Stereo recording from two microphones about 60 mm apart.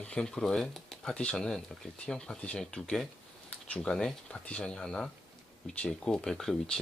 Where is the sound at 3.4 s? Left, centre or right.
Left.